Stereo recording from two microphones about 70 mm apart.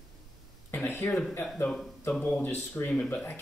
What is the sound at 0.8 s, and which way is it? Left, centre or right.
Speech, left.